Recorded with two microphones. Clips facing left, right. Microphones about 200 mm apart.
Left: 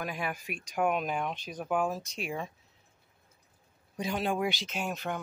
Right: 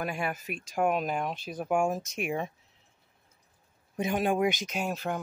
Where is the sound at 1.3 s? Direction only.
5° right (ahead or behind).